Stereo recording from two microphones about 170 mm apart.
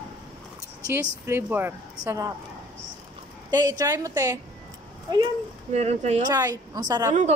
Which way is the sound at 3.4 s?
20° right (ahead or behind).